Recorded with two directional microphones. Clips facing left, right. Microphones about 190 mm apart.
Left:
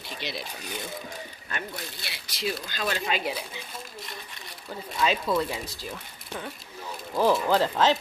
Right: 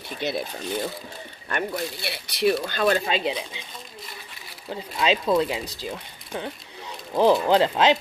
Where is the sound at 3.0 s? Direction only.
25° right (ahead or behind).